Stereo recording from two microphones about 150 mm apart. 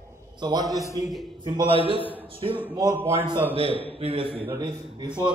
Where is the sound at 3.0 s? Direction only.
15° right (ahead or behind).